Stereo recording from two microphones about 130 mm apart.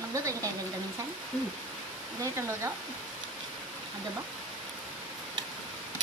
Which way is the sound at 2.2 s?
20° right (ahead or behind).